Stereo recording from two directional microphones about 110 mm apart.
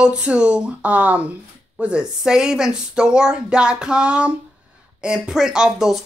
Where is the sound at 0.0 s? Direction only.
10° right (ahead or behind).